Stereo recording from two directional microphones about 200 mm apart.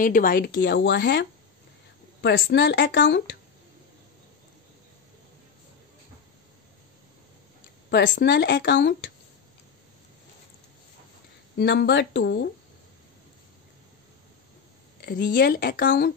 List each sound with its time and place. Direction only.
0.0 s speech: 45° left (ahead or behind)
0.5 s speech: 65° left (ahead or behind)
2.2 s speech: 60° left (ahead or behind)
7.9 s speech: 60° left (ahead or behind)
11.5 s speech: 55° left (ahead or behind)
15.0 s speech: 50° left (ahead or behind)
15.8 s speech: 65° left (ahead or behind)